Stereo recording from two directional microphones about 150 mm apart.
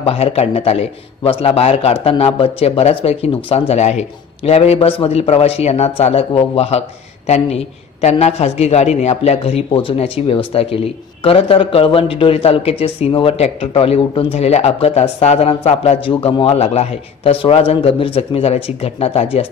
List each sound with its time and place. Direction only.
0.0 s a man's voice: 40° left (ahead or behind)